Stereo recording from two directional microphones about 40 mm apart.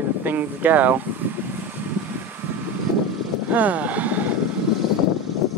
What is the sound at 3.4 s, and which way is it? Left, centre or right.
Vehicle, right.